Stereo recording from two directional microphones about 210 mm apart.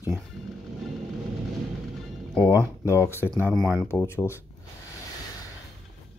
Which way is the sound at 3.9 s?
10° left (ahead or behind).